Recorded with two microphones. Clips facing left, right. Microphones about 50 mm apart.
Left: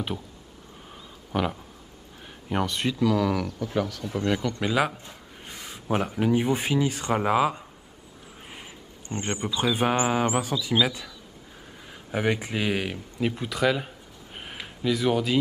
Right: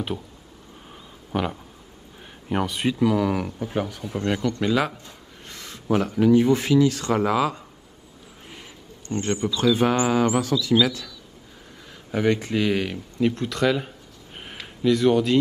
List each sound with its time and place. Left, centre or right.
1.3 s speech: centre
4.4 s a man's voice: centre